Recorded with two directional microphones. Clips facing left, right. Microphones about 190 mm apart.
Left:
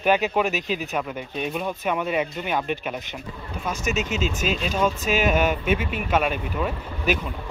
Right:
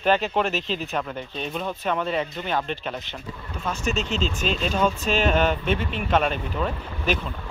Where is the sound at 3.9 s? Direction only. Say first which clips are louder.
Left 1 dB; 5° left (ahead or behind).